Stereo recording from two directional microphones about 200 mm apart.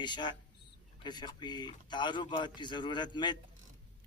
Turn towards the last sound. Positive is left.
turn(degrees=20)  # may be behind; listen again after turning